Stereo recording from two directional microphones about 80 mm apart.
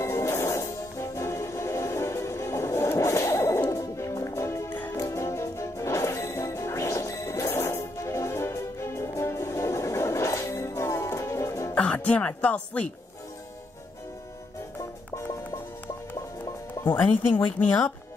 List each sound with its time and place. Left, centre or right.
0.0 s music: left
4.6 s music: left
4.9 s music: left
11.7 s speech: centre
17.6 s speech: left